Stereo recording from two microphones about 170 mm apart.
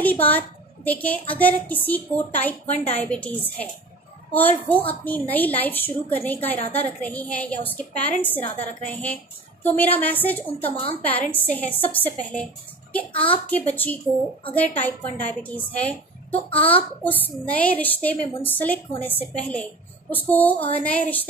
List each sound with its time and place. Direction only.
0.0 s a woman's voice: 10° left (ahead or behind)
2.6 s a woman's voice: 40° left (ahead or behind)
3.0 s a woman's voice: 5° left (ahead or behind)
10.7 s a woman's voice: 30° left (ahead or behind)
11.0 s a woman's voice: 10° left (ahead or behind)